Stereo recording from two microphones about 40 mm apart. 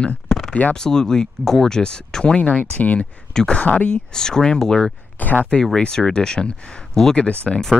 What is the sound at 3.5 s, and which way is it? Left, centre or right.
Speech, left.